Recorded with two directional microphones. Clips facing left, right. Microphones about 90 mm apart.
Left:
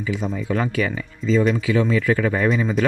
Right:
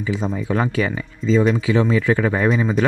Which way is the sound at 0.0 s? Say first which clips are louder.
Right 2 dB; 30° right (ahead or behind).